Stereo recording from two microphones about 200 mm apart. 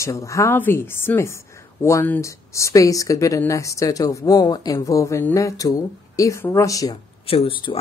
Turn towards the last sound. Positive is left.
turn(degrees=25)  # may be behind; listen again after turning